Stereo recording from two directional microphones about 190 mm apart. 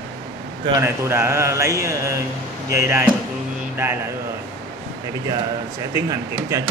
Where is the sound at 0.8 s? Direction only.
15° right (ahead or behind).